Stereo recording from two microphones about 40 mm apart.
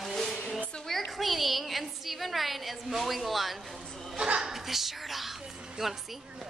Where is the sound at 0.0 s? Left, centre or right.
Centre.